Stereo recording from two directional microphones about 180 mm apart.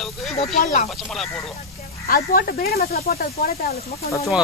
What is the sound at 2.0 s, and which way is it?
Speech, 55° left (ahead or behind).